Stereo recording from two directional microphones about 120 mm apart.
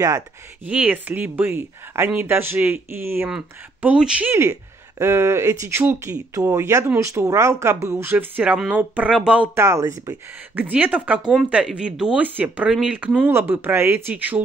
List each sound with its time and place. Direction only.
0.7 s speech: 15° right (ahead or behind)
3.3 s speech: 5° right (ahead or behind)
4.3 s speech: 25° right (ahead or behind)
9.6 s speech: 25° right (ahead or behind)